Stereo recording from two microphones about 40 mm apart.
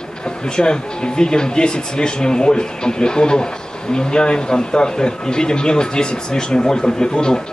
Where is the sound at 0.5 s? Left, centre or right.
Left.